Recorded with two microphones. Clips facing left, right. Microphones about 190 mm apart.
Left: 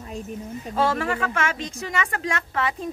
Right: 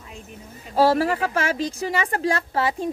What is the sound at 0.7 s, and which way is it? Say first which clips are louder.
Speech: right 5 dB; 35° right (ahead or behind).